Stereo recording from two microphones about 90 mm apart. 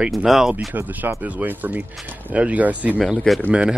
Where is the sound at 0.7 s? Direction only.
20° right (ahead or behind).